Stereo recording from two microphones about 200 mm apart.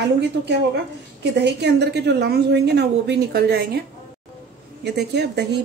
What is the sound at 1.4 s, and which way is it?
A woman's voice, 55° right (ahead or behind).